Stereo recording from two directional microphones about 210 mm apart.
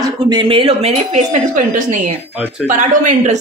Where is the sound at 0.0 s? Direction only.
20° right (ahead or behind).